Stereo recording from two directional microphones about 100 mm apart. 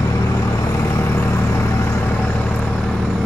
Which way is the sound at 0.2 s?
30° left (ahead or behind).